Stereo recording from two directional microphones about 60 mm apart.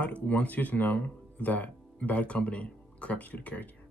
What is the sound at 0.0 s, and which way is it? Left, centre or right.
Speech, left.